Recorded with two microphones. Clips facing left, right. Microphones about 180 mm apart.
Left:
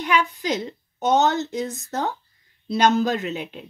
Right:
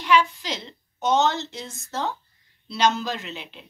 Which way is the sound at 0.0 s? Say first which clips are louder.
Right 1 dB; 50° left (ahead or behind).